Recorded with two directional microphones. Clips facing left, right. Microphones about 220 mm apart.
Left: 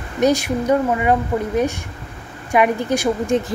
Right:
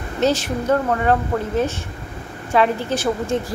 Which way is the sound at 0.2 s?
10° left (ahead or behind).